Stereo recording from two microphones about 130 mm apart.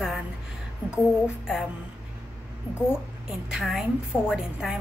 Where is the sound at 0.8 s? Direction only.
20° left (ahead or behind).